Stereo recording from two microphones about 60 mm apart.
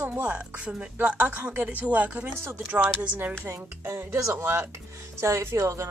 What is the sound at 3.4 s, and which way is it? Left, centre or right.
Speech, right.